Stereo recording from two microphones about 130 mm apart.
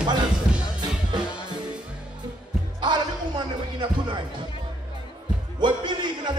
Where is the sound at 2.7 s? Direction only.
35° right (ahead or behind).